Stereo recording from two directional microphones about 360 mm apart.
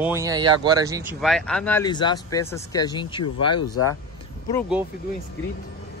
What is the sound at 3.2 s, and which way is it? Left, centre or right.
Speech, left.